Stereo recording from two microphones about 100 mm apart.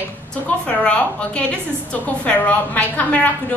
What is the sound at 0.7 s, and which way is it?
A woman's voice, 10° left (ahead or behind).